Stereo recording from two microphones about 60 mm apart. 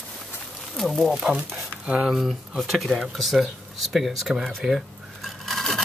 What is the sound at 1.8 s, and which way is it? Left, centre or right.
Speech, centre.